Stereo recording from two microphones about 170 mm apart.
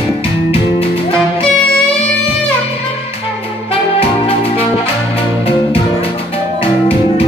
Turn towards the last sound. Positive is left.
turn(degrees=35)  # may be behind; listen again after turning